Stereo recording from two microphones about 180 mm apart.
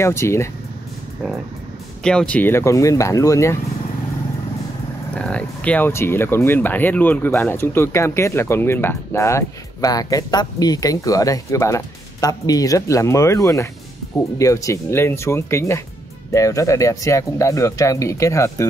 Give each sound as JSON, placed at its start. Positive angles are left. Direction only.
{"t": 0.0, "sound": "speech", "side_deg": 15}
{"t": 2.0, "sound": "speech", "side_deg": 5}
{"t": 5.1, "sound": "speech", "side_deg": 5}